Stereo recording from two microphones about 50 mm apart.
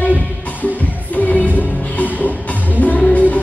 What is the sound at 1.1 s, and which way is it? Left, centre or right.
Music, left.